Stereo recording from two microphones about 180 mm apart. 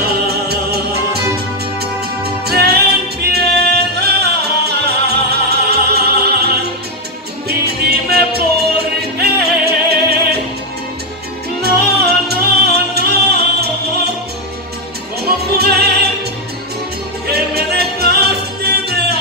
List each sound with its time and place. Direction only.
0.3 s music: 60° right (ahead or behind)
2.4 s music: 60° right (ahead or behind)
12.3 s music: 65° right (ahead or behind)
15.2 s music: 60° right (ahead or behind)
17.3 s music: 60° right (ahead or behind)